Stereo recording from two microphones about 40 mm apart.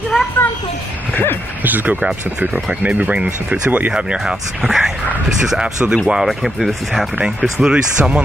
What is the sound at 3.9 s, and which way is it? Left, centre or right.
Speech, centre.